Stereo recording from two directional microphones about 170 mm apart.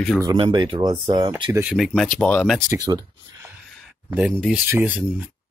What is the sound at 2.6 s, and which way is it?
Speech, 20° right (ahead or behind).